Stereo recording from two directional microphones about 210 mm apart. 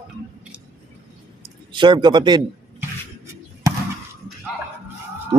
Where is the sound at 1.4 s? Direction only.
20° right (ahead or behind).